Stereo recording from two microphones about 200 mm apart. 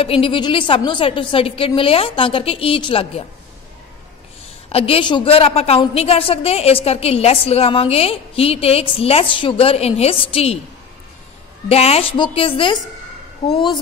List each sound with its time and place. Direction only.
0.0 s a woman's voice: 30° left (ahead or behind)
4.7 s a woman's voice: 30° left (ahead or behind)
11.7 s a woman's voice: 30° left (ahead or behind)